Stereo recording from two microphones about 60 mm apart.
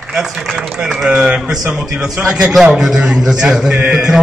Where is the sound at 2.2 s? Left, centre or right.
Centre.